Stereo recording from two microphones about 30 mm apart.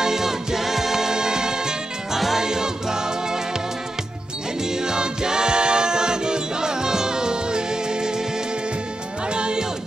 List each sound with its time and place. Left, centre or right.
0.0 s music: centre
2.1 s music: centre
2.4 s music: right
4.6 s music: right
9.3 s music: right